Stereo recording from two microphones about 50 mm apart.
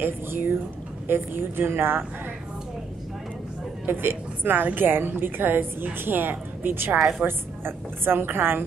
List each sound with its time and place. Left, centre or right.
0.0 s a woman's voice: right
3.8 s a woman's voice: right
7.0 s a woman's voice: centre
7.2 s a woman's voice: right